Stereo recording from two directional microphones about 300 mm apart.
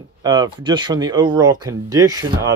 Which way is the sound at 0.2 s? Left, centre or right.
Centre.